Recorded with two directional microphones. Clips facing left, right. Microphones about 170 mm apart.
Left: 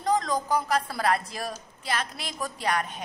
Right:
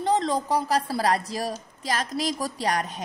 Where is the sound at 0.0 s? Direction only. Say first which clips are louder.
Right 2 dB; 30° right (ahead or behind).